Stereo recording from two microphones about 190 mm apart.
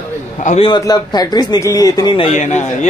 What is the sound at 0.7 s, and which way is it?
Speech, 20° left (ahead or behind).